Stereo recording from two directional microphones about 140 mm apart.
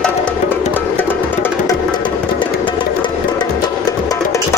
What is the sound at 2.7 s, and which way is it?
Music, 35° left (ahead or behind).